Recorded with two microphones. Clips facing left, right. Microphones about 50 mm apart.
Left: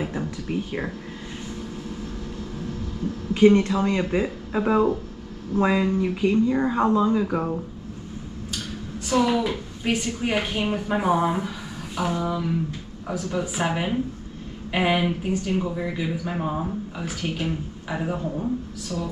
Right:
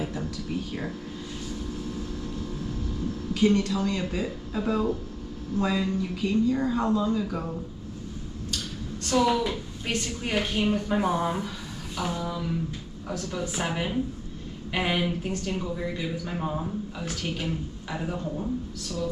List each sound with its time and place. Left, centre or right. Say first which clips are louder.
0.0 s a sound: left 3 dB; left
3.3 s speech: left 7 dB; left
9.0 s speech: left 2 dB; centre